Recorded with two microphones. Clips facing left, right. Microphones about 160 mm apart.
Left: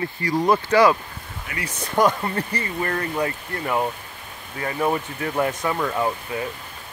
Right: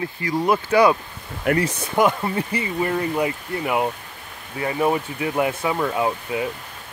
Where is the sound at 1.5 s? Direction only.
70° right (ahead or behind).